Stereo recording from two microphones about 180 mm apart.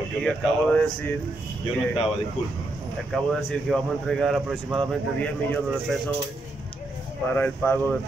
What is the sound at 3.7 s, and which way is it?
Speech, centre (ahead or behind).